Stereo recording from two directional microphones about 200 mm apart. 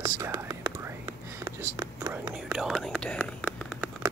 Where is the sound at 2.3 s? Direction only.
5° right (ahead or behind).